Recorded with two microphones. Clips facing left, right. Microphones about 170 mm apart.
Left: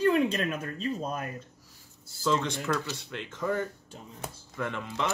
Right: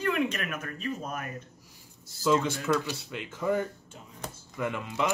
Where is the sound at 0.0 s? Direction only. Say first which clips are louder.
Left 4 dB; 30° left (ahead or behind).